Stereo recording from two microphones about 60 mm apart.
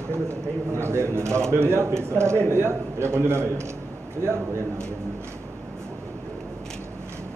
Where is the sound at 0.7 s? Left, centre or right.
Right.